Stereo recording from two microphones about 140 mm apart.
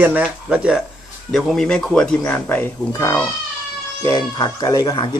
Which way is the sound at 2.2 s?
15° left (ahead or behind).